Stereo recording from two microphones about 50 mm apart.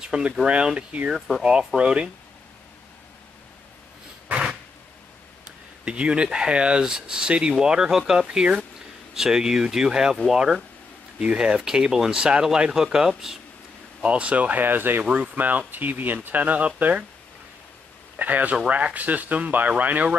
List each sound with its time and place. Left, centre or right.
0.0 s speech: centre
1.4 s speech: centre
5.9 s speech: right
14.0 s speech: right
15.0 s speech: right
18.1 s speech: right